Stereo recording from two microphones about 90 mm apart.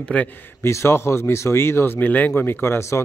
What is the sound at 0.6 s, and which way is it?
A man's voice, 30° left (ahead or behind).